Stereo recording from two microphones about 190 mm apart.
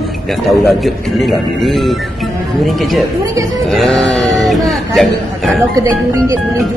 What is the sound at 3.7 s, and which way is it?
Speech, centre (ahead or behind).